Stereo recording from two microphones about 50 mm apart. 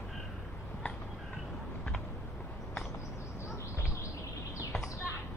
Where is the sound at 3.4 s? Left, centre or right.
Left.